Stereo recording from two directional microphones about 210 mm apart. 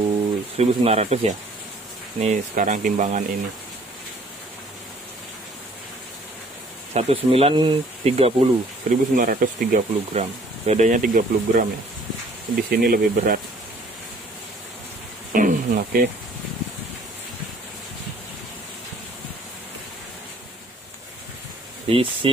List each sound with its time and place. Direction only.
0.6 s speech: 30° right (ahead or behind)
6.9 s speech: 30° right (ahead or behind)
12.6 s speech: 45° right (ahead or behind)
15.3 s speech: 40° right (ahead or behind)
21.8 s speech: 25° right (ahead or behind)